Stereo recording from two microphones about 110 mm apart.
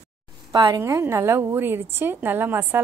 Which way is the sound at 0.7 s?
25° right (ahead or behind).